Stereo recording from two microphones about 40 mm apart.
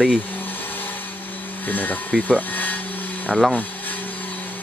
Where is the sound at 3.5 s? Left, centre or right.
Left.